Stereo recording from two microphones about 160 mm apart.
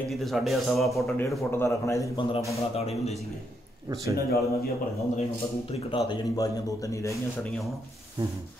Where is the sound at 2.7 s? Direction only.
40° left (ahead or behind).